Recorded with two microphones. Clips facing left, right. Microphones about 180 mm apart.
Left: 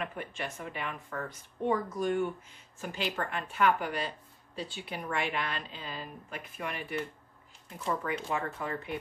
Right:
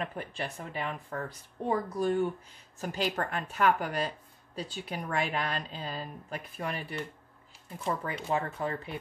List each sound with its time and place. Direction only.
0.0 s a woman's voice: 35° right (ahead or behind)